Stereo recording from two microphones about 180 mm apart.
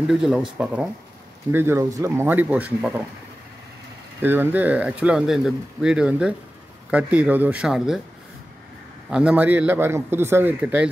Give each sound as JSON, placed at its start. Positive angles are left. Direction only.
{"t": 0.1, "sound": "speech", "side_deg": 0}
{"t": 1.5, "sound": "a man's voice", "side_deg": -15}
{"t": 4.2, "sound": "a man's voice", "side_deg": -10}
{"t": 9.1, "sound": "a man's voice", "side_deg": -5}